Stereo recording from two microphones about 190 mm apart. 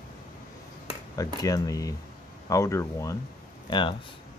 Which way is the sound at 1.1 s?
20° left (ahead or behind).